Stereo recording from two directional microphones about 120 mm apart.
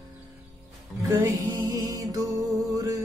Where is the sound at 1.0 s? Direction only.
30° right (ahead or behind).